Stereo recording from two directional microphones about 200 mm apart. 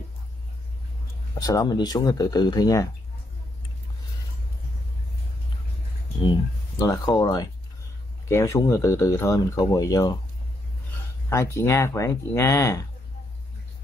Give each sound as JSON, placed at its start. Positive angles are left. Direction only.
{"t": 1.4, "sound": "speech", "side_deg": 15}
{"t": 6.8, "sound": "speech", "side_deg": 20}
{"t": 11.2, "sound": "speech", "side_deg": 15}